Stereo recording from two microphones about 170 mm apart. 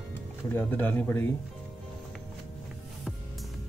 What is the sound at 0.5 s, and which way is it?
Speech, 10° left (ahead or behind).